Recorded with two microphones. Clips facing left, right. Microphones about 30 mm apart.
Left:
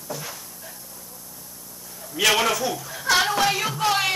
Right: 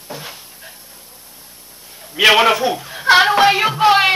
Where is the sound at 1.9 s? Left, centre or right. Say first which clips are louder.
Right 8 dB; right.